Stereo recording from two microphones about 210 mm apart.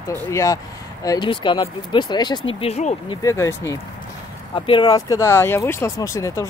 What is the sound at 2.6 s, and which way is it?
Speech, 30° left (ahead or behind).